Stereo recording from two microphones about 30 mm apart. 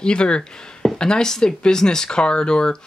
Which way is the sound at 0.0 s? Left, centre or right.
Left.